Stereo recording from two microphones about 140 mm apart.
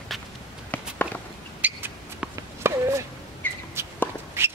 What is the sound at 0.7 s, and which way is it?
Walk, 10° left (ahead or behind).